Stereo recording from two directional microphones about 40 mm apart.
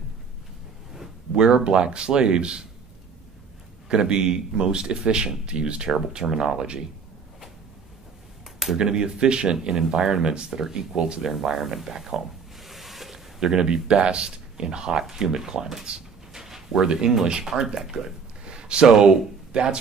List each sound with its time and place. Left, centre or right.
1.4 s speech: right
3.9 s speech: right
8.7 s speech: centre
11.2 s speech: centre
16.4 s a sound: centre
16.8 s speech: centre
18.4 s a sound: right
18.9 s speech: centre
19.5 s speech: right